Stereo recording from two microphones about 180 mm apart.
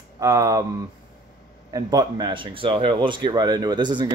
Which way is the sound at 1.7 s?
20° right (ahead or behind).